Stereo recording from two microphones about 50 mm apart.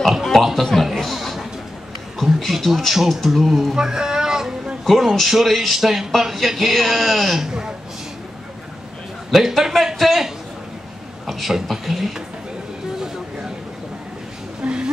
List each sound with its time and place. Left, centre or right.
0.2 s a man's voice: centre
2.4 s speech: centre
9.3 s speech: centre
14.6 s a sound: centre